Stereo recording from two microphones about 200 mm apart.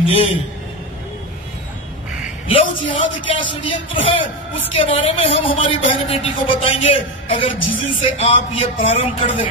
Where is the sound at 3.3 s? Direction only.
30° left (ahead or behind).